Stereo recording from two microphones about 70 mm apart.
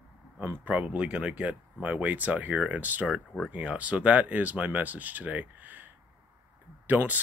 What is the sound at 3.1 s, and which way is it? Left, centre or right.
Speech, centre.